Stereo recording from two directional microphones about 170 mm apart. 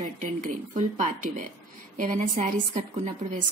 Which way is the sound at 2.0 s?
50° right (ahead or behind).